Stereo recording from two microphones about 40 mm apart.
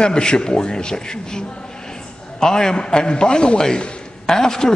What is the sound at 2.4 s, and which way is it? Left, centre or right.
A man's voice, centre.